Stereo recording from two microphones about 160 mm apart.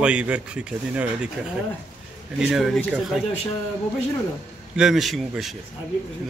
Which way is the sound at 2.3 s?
5° right (ahead or behind).